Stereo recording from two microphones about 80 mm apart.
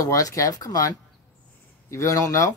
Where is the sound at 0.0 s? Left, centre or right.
Left.